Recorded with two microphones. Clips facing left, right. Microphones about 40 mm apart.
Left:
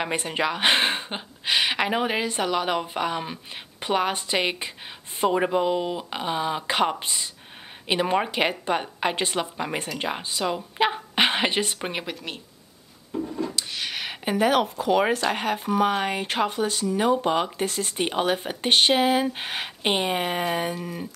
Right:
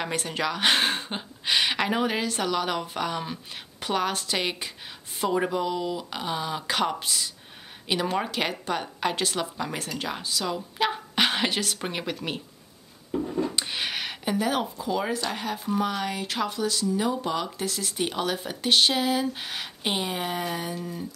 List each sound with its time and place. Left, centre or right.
0.0 s a woman's voice: centre
13.6 s speech: centre
14.3 s speech: left